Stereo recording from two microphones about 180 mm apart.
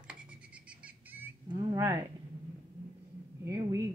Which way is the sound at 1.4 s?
25° right (ahead or behind).